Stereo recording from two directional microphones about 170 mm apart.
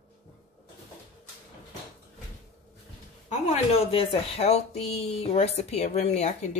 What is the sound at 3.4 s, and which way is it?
Speech, 40° left (ahead or behind).